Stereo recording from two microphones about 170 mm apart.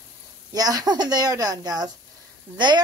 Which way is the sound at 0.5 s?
20° right (ahead or behind).